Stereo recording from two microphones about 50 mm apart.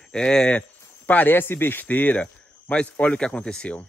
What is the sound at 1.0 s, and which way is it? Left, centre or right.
Speech, left.